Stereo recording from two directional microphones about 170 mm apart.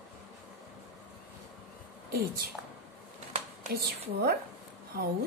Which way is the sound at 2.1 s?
65° right (ahead or behind).